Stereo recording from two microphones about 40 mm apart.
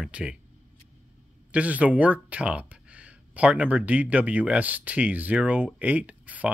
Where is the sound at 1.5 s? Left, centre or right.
Right.